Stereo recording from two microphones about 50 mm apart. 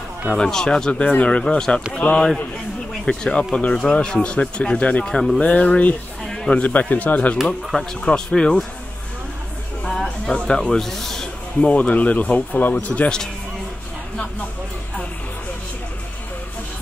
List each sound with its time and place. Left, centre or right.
0.4 s speech: centre
5.1 s speech: centre
5.4 s speech: left
6.2 s a sound: centre
6.5 s speech: left
10.2 s speech: centre
11.6 s speech: left